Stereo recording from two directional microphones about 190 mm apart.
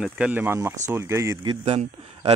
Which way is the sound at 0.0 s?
5° right (ahead or behind).